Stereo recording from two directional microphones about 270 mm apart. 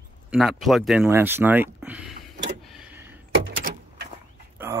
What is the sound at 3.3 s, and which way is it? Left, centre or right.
Door, right.